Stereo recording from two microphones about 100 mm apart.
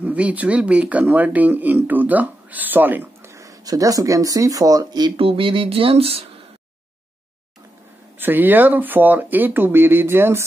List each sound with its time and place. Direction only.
0.0 s speech: 15° right (ahead or behind)
3.3 s speech: 35° right (ahead or behind)
5.1 s a sound: 65° right (ahead or behind)
8.2 s speech: 20° right (ahead or behind)